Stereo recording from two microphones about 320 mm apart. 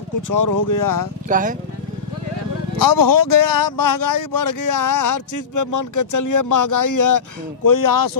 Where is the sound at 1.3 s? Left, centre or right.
Right.